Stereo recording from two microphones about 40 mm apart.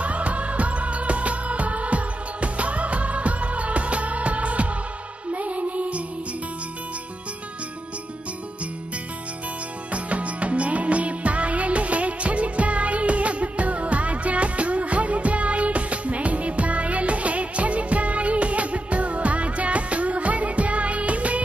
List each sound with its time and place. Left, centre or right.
0.0 s music: right
9.9 s music: right